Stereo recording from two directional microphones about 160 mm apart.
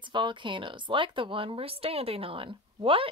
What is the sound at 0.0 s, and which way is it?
Speech, 30° right (ahead or behind).